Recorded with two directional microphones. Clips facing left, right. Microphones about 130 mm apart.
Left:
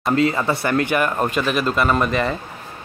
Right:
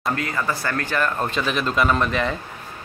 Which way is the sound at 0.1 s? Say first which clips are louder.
Left 8 dB; 20° left (ahead or behind).